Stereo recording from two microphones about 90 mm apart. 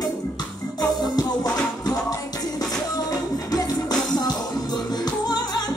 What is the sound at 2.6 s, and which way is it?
Music, 45° left (ahead or behind).